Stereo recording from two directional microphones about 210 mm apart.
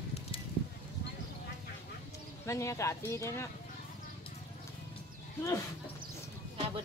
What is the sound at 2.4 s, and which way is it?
Speech, 15° left (ahead or behind).